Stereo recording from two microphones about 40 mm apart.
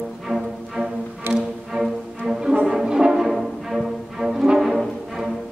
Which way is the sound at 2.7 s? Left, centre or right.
Centre.